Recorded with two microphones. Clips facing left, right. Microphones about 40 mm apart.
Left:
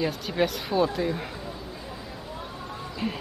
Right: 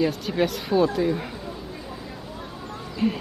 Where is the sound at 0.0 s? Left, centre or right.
Centre.